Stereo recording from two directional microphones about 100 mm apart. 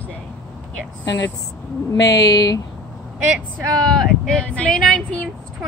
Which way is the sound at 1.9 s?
40° left (ahead or behind).